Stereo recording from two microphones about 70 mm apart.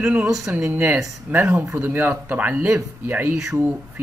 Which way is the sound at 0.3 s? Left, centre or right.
Centre.